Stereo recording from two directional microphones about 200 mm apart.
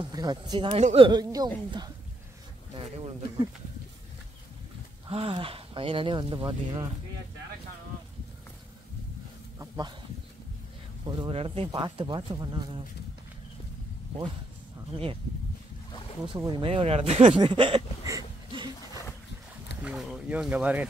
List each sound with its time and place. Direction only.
0.0 s speech: 20° right (ahead or behind)
5.0 s speech: 25° right (ahead or behind)
9.6 s speech: 20° right (ahead or behind)
11.1 s speech: 25° right (ahead or behind)
16.3 s a sound: 20° right (ahead or behind)
19.8 s speech: 5° right (ahead or behind)